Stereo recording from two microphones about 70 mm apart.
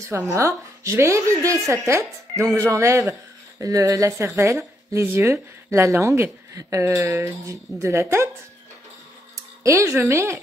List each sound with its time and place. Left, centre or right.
0.3 s speech: right
4.4 s a woman's voice: right
9.3 s speech: right